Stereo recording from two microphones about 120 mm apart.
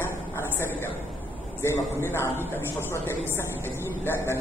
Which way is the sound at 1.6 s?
20° left (ahead or behind).